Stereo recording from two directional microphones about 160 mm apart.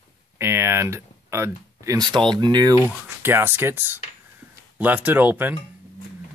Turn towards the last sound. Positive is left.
turn(degrees=-10)  # may be behind; listen again after turning